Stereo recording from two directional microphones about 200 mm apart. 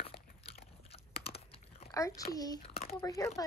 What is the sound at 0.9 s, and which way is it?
Computer keyboard, 30° left (ahead or behind).